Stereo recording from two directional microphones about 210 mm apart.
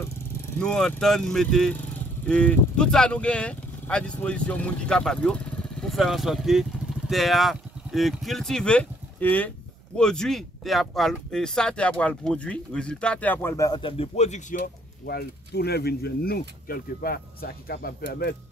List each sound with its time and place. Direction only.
0.6 s speech: 5° left (ahead or behind); by 14.6 s 35° left (ahead or behind)
15.0 s speech: 50° left (ahead or behind)